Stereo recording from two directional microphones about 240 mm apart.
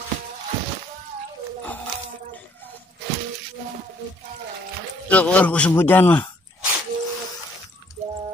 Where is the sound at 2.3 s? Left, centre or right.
Centre.